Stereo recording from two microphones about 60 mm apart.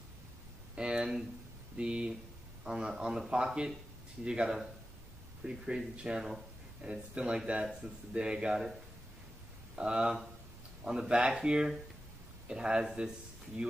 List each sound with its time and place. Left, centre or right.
0.7 s a sound: centre
1.8 s speech: centre
9.8 s speech: centre